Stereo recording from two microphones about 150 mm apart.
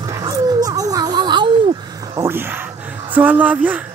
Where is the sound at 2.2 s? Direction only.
15° right (ahead or behind).